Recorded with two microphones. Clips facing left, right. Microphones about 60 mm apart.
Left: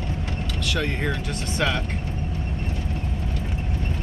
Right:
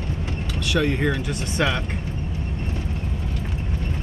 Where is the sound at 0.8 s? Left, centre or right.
Centre.